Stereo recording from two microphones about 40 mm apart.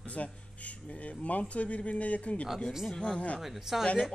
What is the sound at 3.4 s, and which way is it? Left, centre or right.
Speech, centre.